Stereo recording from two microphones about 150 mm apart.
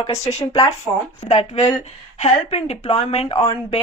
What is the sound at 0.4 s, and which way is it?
Speech, 20° left (ahead or behind).